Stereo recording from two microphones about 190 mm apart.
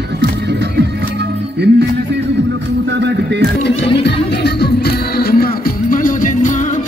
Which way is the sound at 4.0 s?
60° left (ahead or behind).